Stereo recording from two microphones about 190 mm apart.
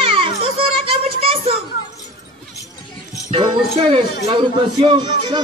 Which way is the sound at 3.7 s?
30° right (ahead or behind).